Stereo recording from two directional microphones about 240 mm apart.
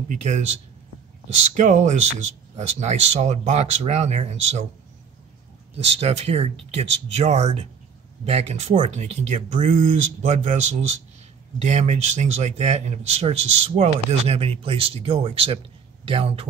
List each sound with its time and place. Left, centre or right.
0.1 s speech: right
1.6 s speech: right
5.9 s speech: right